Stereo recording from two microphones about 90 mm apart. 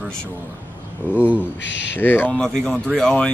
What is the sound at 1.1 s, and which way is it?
Speech, 15° right (ahead or behind).